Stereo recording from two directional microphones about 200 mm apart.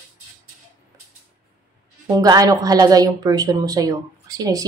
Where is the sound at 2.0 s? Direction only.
20° right (ahead or behind).